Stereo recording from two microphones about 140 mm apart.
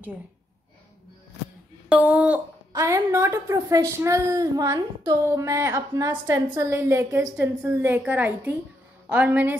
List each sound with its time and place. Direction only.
1.9 s a woman's voice: 10° right (ahead or behind)